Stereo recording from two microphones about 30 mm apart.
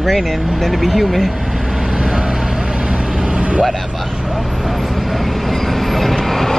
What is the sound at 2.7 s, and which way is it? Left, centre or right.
Vehicle, right.